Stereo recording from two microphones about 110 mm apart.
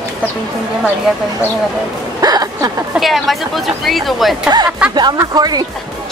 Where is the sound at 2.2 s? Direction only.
35° right (ahead or behind).